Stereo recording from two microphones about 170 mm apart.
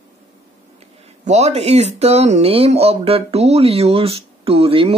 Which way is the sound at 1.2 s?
40° right (ahead or behind).